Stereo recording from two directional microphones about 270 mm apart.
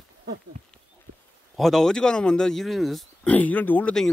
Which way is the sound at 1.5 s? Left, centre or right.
Centre.